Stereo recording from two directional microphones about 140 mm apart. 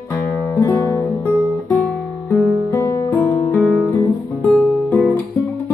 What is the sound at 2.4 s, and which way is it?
Guitar, 5° left (ahead or behind).